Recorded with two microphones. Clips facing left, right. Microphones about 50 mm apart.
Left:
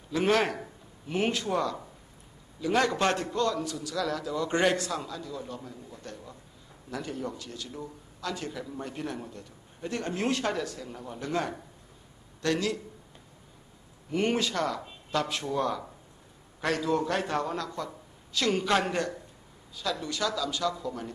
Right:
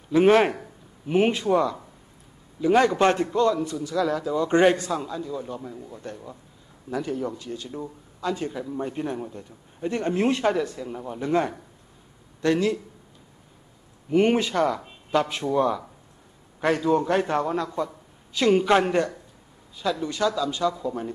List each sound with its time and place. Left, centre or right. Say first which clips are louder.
0.1 s speech: right 8 dB; right
7.0 s a man's voice: right 7 dB; centre
7.5 s speech: right 6 dB; right
14.1 s speech: right 7 dB; right
17.0 s speech: right 6 dB; right